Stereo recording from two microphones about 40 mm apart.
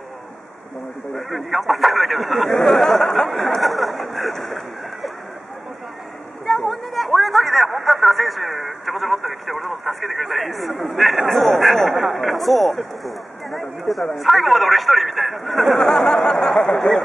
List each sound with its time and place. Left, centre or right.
1.1 s speech: centre
3.6 s a sound: centre
6.4 s speech: centre
15.8 s speech: centre